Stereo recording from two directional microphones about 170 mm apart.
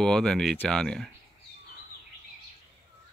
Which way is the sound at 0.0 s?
5° left (ahead or behind).